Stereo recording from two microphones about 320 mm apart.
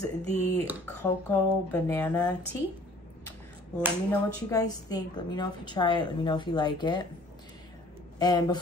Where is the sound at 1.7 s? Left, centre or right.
Centre.